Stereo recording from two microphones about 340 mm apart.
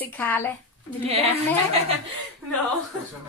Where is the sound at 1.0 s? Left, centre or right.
Centre.